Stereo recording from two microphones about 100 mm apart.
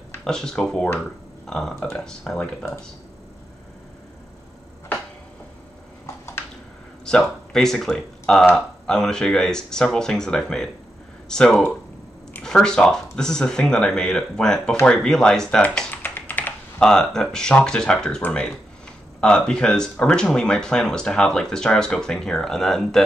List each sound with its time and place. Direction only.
0.2 s speech: 5° left (ahead or behind)
7.1 s speech: 5° left (ahead or behind)
16.2 s typing: 20° left (ahead or behind)
16.8 s speech: 5° left (ahead or behind)